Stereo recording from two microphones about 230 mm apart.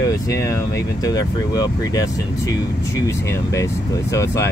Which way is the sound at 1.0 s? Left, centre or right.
Centre.